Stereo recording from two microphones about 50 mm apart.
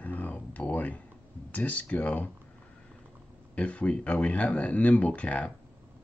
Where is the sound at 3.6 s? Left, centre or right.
Left.